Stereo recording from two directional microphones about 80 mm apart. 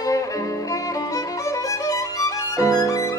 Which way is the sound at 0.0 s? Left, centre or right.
Left.